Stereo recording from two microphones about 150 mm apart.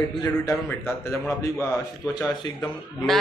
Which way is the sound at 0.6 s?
15° left (ahead or behind).